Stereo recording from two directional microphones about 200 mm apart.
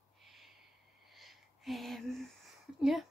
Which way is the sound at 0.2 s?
Centre (ahead or behind).